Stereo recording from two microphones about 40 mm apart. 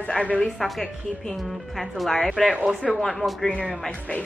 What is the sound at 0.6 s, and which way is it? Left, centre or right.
A woman's voice, centre.